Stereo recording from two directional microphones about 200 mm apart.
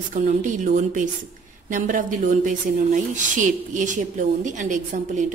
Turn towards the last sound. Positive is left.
turn(degrees=-40)  # may be behind; listen again after turning